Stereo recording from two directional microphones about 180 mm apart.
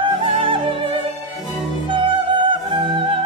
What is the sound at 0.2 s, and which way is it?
Music, 30° right (ahead or behind).